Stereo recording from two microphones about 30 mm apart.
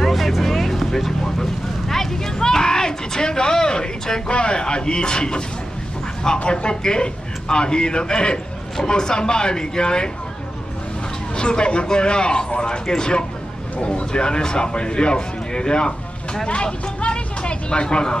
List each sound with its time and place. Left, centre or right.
0.0 s vehicle: centre
2.3 s speech: left
6.4 s speech: left
11.3 s a man's voice: left